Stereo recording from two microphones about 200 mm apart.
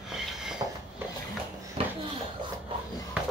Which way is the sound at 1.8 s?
30° right (ahead or behind).